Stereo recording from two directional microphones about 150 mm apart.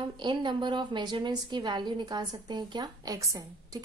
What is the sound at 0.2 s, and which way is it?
A woman's voice, 30° right (ahead or behind).